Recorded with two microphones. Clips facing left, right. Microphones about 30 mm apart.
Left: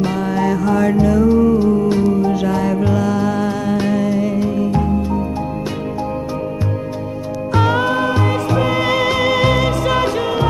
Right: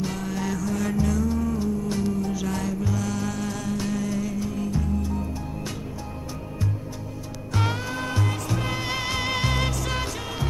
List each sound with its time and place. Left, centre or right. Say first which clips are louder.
0.0 s music: left 11 dB; left
7.5 s music: left 12 dB; left